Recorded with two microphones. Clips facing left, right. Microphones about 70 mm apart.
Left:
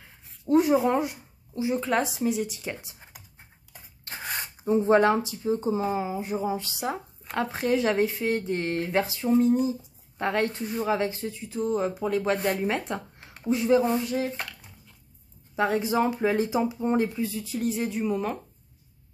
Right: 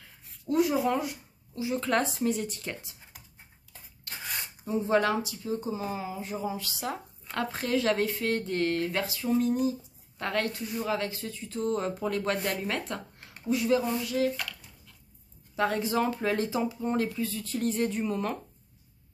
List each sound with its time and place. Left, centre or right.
0.0 s a sound: left
1.8 s speech: centre
4.0 s speech: left
15.5 s speech: centre